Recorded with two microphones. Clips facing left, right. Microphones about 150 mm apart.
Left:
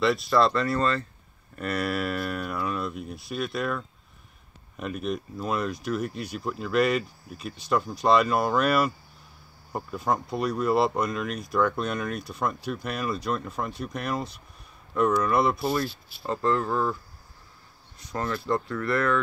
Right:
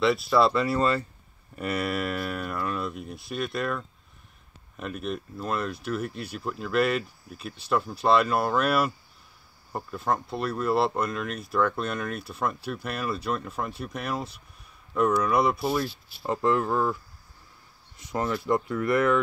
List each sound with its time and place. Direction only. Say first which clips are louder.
0.0 s speech: even; 5° right (ahead or behind)
17.9 s speech: right 2 dB; 20° right (ahead or behind)